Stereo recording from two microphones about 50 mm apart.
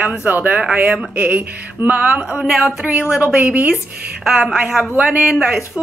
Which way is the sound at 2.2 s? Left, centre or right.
Centre.